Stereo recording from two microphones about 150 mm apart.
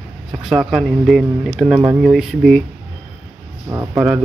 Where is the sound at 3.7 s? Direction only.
20° right (ahead or behind).